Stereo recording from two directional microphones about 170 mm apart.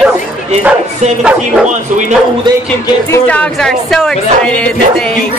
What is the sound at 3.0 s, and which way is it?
Speech, 15° left (ahead or behind).